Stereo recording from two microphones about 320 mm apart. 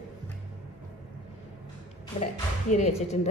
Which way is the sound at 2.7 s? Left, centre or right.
Left.